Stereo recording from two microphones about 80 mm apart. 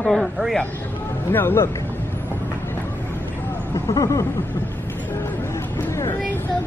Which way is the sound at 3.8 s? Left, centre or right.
Left.